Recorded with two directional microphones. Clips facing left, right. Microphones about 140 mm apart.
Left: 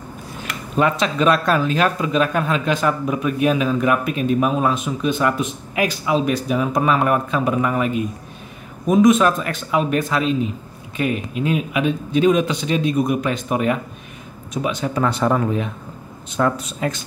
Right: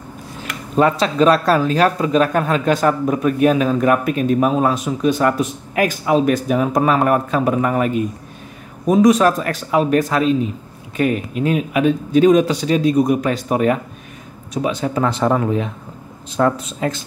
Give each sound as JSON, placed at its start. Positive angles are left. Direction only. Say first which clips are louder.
{"t": 0.7, "sound": "speech", "louder": "right 4 dB", "side_deg": -35}